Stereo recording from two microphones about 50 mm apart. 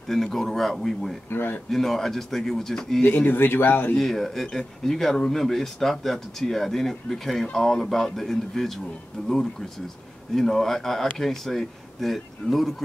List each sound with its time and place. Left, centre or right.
0.1 s speech: centre
1.3 s speech: left
1.7 s speech: centre
3.3 s speech: left
3.9 s speech: centre